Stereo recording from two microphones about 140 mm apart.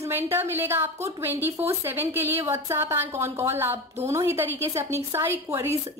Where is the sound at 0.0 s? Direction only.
15° right (ahead or behind).